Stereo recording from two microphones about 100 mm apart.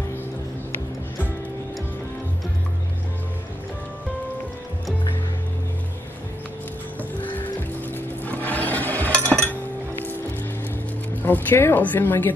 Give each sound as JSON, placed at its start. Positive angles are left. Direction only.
{"t": 7.0, "sound": "music", "side_deg": 20}
{"t": 11.2, "sound": "a woman's voice", "side_deg": 20}